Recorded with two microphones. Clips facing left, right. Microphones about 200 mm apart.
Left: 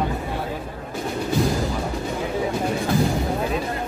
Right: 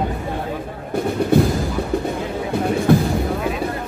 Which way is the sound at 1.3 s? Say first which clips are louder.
Right 7 dB; 60° right (ahead or behind).